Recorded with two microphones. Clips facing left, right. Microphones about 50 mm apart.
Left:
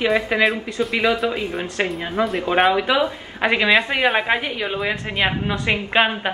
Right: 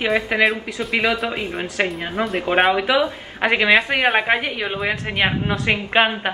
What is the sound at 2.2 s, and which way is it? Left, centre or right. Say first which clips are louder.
Speech: left 2 dB; right.